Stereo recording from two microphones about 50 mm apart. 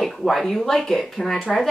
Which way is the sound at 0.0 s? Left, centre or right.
Centre.